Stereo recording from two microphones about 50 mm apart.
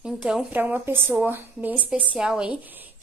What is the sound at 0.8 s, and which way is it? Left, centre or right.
Speech, right.